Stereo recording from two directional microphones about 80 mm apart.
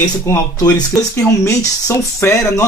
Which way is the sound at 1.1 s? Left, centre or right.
Left.